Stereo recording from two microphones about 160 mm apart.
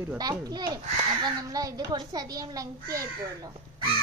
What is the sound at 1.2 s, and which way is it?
A child's voice, 20° right (ahead or behind).